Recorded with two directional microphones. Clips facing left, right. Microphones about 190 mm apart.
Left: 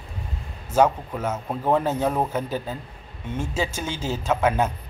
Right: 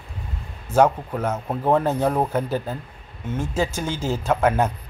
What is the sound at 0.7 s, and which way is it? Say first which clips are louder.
Speech: right 2 dB; 10° right (ahead or behind).